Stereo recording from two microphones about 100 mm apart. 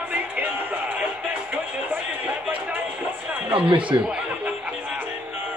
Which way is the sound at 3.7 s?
55° right (ahead or behind).